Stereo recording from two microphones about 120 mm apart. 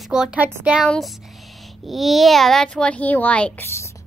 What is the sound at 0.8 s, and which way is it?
A child's voice, centre (ahead or behind).